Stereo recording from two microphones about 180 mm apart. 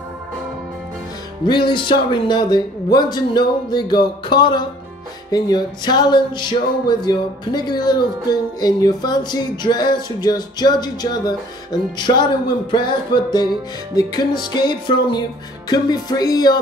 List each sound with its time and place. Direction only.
1.5 s speech: 25° left (ahead or behind)